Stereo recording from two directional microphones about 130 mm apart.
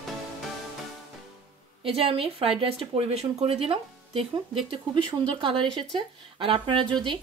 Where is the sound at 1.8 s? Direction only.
45° right (ahead or behind).